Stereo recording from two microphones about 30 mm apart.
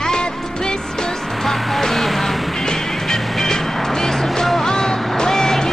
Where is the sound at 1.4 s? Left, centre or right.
Centre.